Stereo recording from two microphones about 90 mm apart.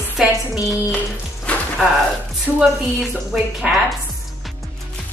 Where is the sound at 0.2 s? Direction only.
Centre (ahead or behind).